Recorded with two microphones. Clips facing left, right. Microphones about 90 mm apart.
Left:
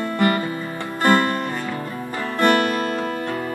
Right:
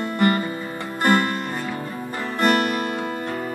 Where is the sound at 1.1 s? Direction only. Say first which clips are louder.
Left 2 dB; 35° left (ahead or behind).